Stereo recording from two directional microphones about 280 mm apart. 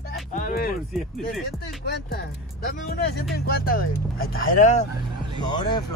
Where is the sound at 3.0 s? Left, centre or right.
Left.